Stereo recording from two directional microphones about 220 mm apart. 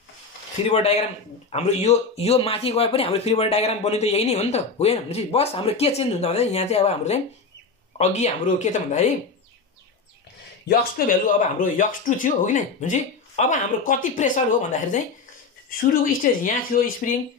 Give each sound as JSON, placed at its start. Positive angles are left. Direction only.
{"t": 1.5, "sound": "a man's voice", "side_deg": 30}
{"t": 10.7, "sound": "speech", "side_deg": 40}